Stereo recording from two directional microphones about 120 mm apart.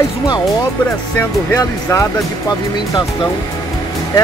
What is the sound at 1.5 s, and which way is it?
Speech, 25° left (ahead or behind).